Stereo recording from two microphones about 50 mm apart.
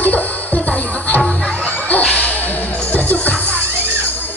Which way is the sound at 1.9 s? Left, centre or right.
Left.